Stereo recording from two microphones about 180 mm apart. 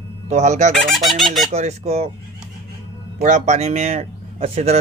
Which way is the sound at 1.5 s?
35° right (ahead or behind).